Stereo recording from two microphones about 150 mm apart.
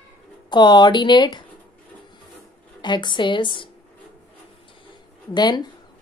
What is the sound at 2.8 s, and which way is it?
Speech, 30° left (ahead or behind).